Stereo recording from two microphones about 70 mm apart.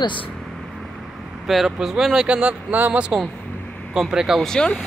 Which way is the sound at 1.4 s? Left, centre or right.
Centre.